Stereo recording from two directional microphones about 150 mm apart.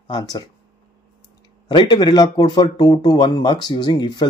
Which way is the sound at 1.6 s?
30° left (ahead or behind).